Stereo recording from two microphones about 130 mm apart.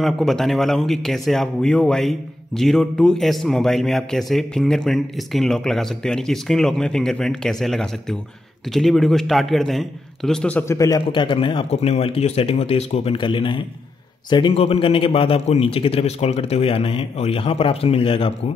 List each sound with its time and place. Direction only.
0.0 s speech: centre (ahead or behind)
10.6 s a man's voice: 25° left (ahead or behind)
11.1 s a man's voice: 40° left (ahead or behind)